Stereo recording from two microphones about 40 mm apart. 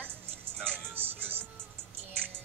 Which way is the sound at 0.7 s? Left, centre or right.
Right.